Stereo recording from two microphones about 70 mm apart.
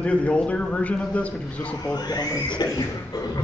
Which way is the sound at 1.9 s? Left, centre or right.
Left.